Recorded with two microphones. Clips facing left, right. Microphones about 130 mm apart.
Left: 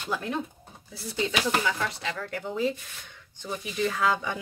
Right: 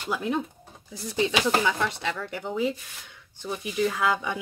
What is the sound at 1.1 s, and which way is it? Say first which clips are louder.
Speech: right 4 dB; 20° right (ahead or behind).